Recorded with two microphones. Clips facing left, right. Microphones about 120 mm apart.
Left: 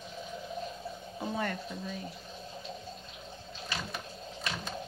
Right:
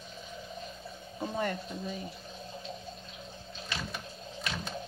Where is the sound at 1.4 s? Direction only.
5° right (ahead or behind).